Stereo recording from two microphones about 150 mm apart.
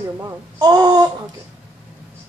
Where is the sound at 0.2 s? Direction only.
25° right (ahead or behind).